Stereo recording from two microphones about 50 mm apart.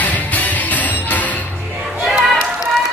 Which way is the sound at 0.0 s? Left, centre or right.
Left.